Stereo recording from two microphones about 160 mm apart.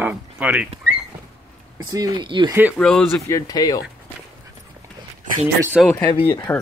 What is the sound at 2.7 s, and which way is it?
Speech, 5° left (ahead or behind).